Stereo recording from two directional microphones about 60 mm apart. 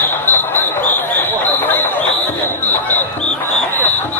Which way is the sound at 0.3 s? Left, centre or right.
Left.